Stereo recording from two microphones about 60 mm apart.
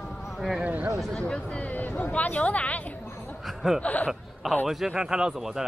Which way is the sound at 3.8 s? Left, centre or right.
Left.